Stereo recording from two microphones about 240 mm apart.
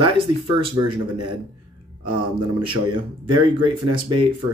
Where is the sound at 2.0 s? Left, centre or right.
Right.